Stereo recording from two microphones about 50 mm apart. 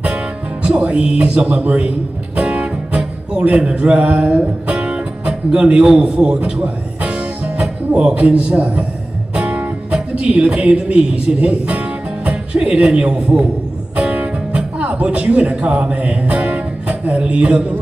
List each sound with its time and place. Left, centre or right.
0.0 s music: right
7.9 s a man's voice: right
9.3 s music: centre
9.6 s a man's voice: right
13.9 s music: right
17.2 s a man's voice: right